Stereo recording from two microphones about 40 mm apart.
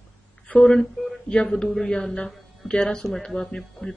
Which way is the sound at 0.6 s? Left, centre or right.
Centre.